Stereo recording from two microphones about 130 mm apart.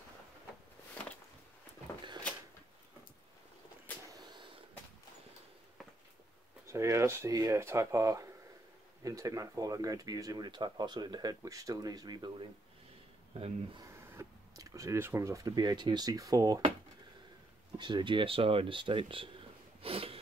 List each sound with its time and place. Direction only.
6.7 s speech: 20° right (ahead or behind); by 13.8 s 45° right (ahead or behind)
14.1 s speech: 25° right (ahead or behind)
17.7 s speech: 35° right (ahead or behind)
19.8 s a sound: 45° right (ahead or behind)